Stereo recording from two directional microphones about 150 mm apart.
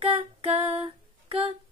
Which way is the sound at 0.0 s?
40° right (ahead or behind).